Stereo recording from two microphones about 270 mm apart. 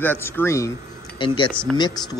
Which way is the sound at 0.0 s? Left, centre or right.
Centre.